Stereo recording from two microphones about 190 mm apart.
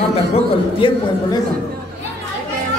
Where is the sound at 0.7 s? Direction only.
25° left (ahead or behind).